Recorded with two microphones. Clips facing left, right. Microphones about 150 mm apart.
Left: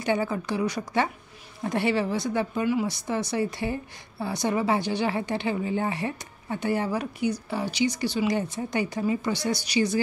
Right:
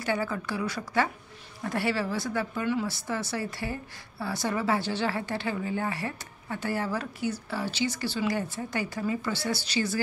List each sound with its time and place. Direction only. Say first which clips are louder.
0.0 s speech: left 4 dB; 20° left (ahead or behind)